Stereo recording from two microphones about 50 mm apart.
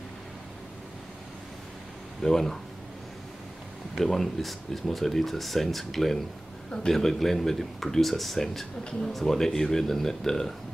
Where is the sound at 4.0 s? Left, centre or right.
Centre.